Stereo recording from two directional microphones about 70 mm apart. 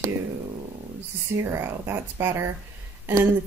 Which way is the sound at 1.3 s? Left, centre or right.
Right.